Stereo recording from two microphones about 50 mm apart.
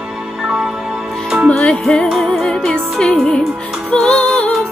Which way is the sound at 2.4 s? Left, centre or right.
Centre.